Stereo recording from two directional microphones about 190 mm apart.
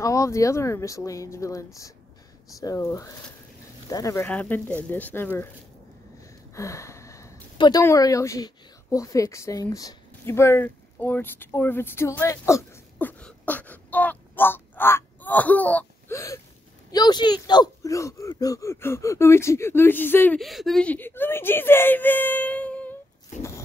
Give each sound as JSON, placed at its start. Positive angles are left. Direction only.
{"t": 0.0, "sound": "speech", "side_deg": 15}
{"t": 6.5, "sound": "a sound", "side_deg": 15}
{"t": 7.8, "sound": "speech", "side_deg": 15}
{"t": 13.2, "sound": "a sound", "side_deg": 10}
{"t": 16.9, "sound": "speech", "side_deg": 20}
{"t": 20.3, "sound": "speech", "side_deg": 0}
{"t": 23.3, "sound": "scrape", "side_deg": 40}